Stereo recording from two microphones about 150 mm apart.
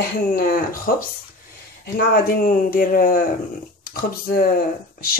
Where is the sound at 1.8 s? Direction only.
80° left; by 3.2 s 65° left (ahead or behind).